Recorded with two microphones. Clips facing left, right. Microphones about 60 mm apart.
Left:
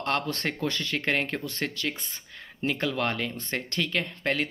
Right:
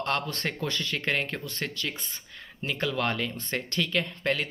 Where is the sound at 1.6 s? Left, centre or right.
Left.